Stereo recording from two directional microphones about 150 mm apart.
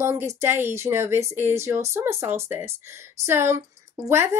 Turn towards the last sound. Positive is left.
turn(degrees=-15)  # may be behind; listen again after turning